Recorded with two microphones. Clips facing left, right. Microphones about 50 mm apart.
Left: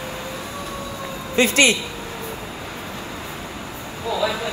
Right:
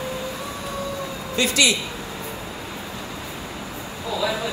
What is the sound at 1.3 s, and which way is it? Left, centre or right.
Speech, left.